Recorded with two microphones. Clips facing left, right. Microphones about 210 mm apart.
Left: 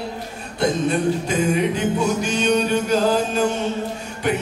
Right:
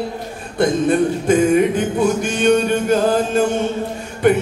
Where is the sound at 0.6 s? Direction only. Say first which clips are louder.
Right 5 dB; 50° right (ahead or behind).